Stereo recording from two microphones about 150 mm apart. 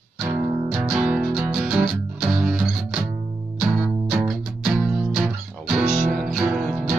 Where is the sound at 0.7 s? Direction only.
20° right (ahead or behind).